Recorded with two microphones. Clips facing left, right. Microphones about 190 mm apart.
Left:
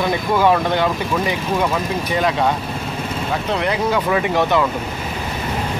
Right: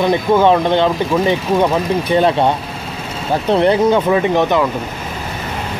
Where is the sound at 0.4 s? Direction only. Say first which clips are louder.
Right 1 dB; 20° right (ahead or behind).